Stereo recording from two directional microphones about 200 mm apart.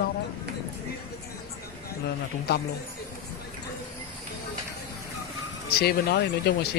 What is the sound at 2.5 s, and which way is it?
Speech, 55° left (ahead or behind).